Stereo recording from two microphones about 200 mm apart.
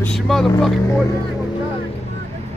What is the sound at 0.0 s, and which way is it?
Vehicle, centre (ahead or behind).